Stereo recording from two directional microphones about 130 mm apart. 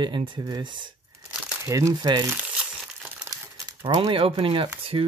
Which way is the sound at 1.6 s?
25° right (ahead or behind).